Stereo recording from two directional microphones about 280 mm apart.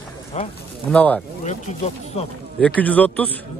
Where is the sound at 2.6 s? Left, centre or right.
Centre.